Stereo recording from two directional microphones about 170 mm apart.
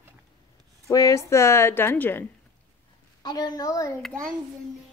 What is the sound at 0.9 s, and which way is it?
Speech, 20° left (ahead or behind).